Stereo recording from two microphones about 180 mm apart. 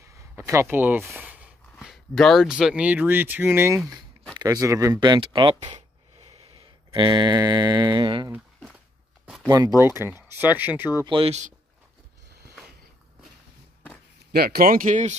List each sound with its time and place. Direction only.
0.0 s a sound: 15° right (ahead or behind)
1.1 s speech: 10° right (ahead or behind); by 5.8 s 25° right (ahead or behind)
5.8 s a sound: 35° right (ahead or behind)
9.5 s speech: 20° right (ahead or behind)
11.1 s speech: 30° right (ahead or behind)
14.3 s speech: 60° right (ahead or behind); by 15.1 s 45° right (ahead or behind)